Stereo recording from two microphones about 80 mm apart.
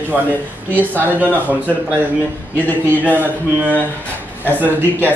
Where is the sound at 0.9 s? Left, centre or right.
Right.